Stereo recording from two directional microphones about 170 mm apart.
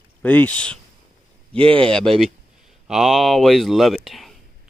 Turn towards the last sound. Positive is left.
turn(degrees=0)  # may be behind; listen again after turning